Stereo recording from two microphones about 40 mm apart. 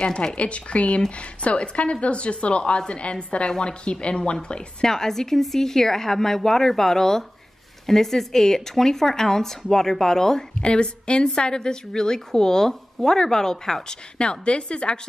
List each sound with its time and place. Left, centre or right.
0.0 s a woman's voice: left
4.8 s a woman's voice: centre
10.6 s a woman's voice: left
14.1 s a woman's voice: left